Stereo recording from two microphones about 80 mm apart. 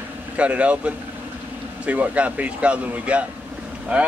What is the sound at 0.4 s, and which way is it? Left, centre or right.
Speech, centre.